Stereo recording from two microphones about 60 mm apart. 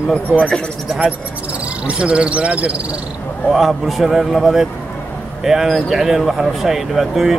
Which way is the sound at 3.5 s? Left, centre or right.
Centre.